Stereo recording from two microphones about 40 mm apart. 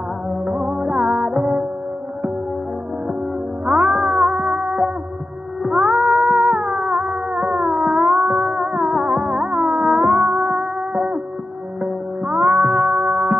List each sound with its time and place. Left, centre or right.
0.5 s music: centre
3.6 s music: centre
5.7 s cat: right
6.5 s music: centre